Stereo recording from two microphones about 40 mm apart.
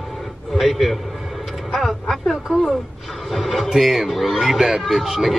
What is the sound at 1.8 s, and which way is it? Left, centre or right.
Speech, centre.